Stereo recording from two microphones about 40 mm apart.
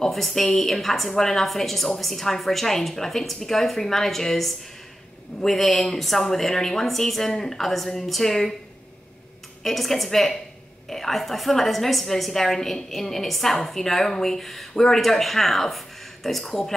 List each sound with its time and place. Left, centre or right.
0.1 s a woman's voice: centre
9.6 s a woman's voice: centre